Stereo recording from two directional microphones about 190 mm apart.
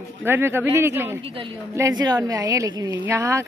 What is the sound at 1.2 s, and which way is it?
A woman's voice, 25° right (ahead or behind).